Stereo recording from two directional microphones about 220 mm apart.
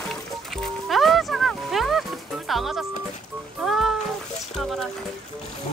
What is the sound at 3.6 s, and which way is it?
Music, centre (ahead or behind).